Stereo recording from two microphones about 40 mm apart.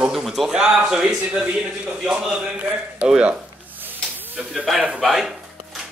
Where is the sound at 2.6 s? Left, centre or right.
Right.